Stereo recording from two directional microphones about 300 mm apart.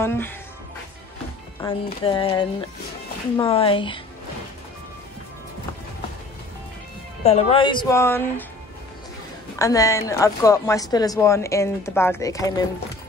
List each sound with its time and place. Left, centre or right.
0.0 s a woman's voice: centre
1.6 s a woman's voice: centre
7.2 s a woman's voice: left
9.6 s a woman's voice: centre